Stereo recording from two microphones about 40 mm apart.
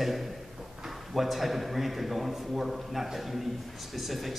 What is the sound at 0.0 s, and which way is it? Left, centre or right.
A man's voice, centre.